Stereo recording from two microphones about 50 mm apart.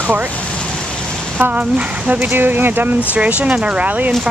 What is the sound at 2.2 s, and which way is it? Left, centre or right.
Speech, right.